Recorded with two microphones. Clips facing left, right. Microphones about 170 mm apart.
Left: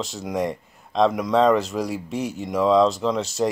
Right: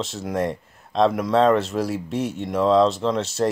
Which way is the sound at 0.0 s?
Centre (ahead or behind).